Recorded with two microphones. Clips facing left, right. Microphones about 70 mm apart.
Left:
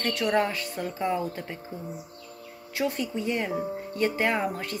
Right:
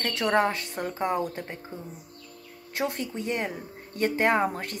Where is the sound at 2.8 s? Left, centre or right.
Right.